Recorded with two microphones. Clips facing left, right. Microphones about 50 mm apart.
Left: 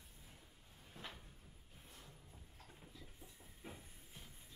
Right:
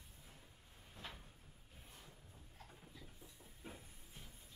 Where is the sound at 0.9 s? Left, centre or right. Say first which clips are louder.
Even; centre.